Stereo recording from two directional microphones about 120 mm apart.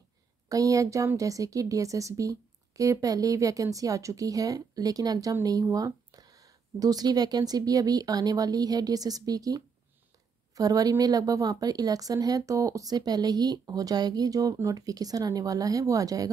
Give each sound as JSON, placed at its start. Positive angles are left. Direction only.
{"t": 0.5, "sound": "speech", "side_deg": -30}